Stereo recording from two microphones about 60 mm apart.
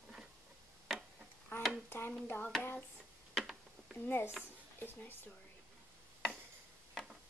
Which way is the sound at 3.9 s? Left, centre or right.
Left.